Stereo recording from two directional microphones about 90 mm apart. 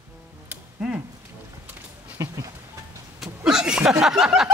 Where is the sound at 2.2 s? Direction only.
35° right (ahead or behind).